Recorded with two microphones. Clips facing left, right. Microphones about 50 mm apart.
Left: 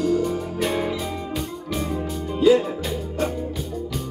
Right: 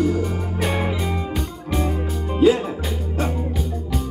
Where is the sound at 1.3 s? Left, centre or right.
Centre.